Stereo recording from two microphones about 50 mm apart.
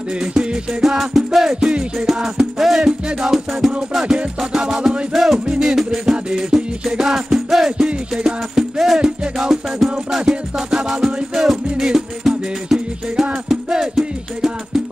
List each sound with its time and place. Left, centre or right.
0.2 s music: centre
2.0 s music: centre
7.7 s music: centre